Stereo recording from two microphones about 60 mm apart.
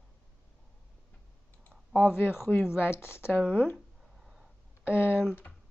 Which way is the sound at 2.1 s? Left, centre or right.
Left.